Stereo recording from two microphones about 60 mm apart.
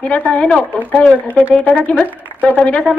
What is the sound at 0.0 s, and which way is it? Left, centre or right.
Speech, left.